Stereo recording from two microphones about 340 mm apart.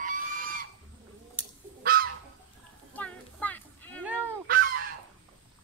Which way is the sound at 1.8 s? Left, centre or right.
Right.